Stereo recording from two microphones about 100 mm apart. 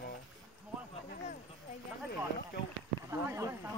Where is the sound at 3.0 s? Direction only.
30° right (ahead or behind).